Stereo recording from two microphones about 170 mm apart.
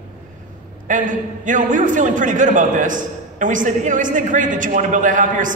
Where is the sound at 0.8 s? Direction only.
50° right (ahead or behind).